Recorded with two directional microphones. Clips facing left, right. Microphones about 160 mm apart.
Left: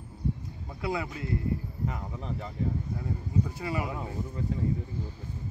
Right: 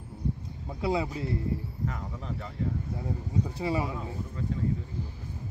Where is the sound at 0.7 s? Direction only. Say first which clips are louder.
Right 4 dB; 25° right (ahead or behind).